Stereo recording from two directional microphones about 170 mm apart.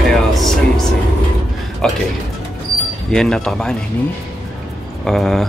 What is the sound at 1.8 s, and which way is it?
Speech, 5° left (ahead or behind).